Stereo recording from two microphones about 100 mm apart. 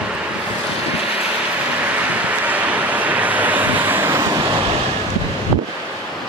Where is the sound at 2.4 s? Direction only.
15° right (ahead or behind).